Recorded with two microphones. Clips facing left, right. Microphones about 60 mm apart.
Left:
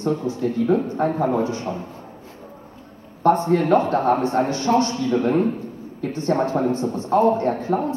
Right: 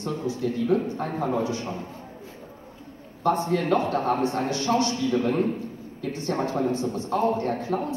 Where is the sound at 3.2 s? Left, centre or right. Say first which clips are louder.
Left 6 dB; left.